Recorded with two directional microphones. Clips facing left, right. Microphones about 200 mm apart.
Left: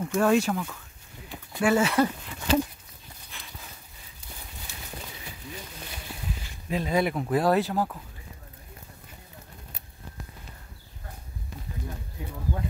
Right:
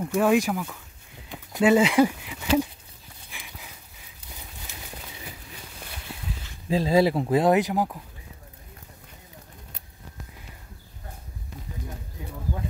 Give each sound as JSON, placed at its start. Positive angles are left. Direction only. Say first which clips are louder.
{"t": 0.0, "sound": "speech", "louder": "right 1 dB", "side_deg": -10}
{"t": 3.3, "sound": "a sound", "louder": "right 2 dB", "side_deg": -10}
{"t": 6.7, "sound": "speech", "louder": "right 5 dB", "side_deg": -30}